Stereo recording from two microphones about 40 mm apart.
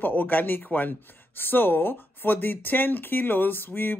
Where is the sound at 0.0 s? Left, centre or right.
Left.